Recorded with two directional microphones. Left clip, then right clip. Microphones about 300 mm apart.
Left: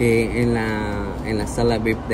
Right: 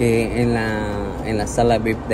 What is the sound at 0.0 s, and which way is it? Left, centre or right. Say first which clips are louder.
Music: even; right.